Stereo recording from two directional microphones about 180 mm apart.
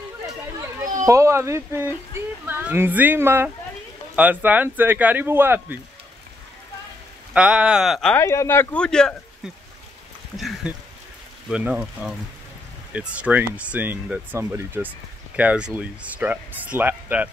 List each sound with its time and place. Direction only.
1.0 s speech: 15° right (ahead or behind)
7.3 s speech: 5° right (ahead or behind)
8.2 s speech: 15° left (ahead or behind)
10.3 s speech: centre (ahead or behind)